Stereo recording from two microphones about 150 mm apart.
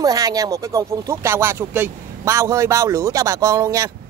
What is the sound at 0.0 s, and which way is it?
Speech, 25° right (ahead or behind).